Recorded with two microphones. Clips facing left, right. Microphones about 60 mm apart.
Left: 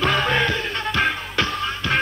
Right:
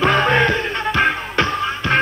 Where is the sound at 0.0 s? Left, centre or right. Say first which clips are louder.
Right 5 dB; right.